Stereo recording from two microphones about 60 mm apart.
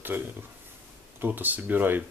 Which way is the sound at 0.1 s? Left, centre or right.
Right.